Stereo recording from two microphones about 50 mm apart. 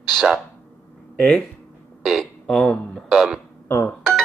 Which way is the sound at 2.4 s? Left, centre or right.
Centre.